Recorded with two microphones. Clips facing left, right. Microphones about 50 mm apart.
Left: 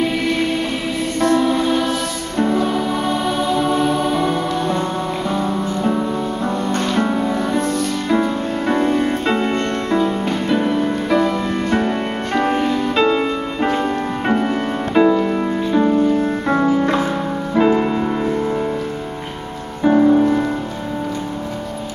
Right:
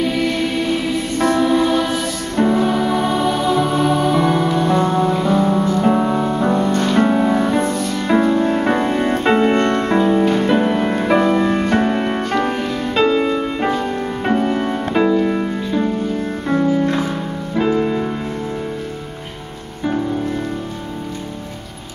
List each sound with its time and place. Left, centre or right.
1.1 s music: centre
5.9 s music: right
6.8 s music: centre
10.2 s music: centre
10.5 s music: centre
10.8 s music: right
11.1 s music: centre
17.6 s music: centre